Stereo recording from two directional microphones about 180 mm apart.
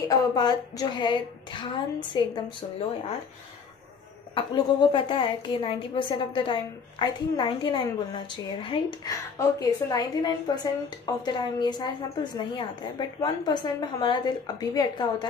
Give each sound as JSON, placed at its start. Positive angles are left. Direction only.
{"t": 0.1, "sound": "a woman's voice", "side_deg": 20}
{"t": 4.4, "sound": "a woman's voice", "side_deg": 30}